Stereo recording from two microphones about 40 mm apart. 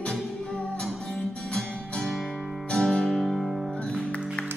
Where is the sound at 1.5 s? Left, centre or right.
Centre.